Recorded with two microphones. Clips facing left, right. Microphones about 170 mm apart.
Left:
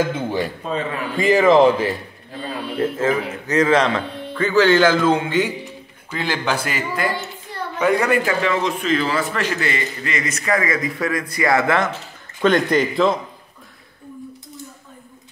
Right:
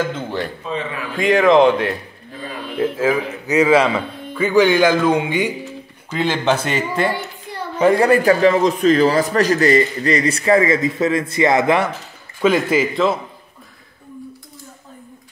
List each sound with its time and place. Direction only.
0.1 s speech: 10° left (ahead or behind)
1.1 s a man's voice: centre (ahead or behind); by 11.9 s 15° right (ahead or behind)
12.4 s speech: 5° right (ahead or behind)